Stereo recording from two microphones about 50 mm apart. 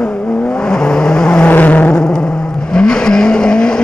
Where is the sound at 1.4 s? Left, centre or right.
Left.